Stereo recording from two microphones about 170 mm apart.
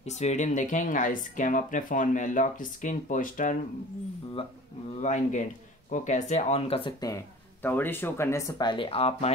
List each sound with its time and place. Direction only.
0.0 s speech: 40° left (ahead or behind)
5.0 s speech: 45° left (ahead or behind)
7.6 s speech: 10° left (ahead or behind); by 9.3 s 35° left (ahead or behind)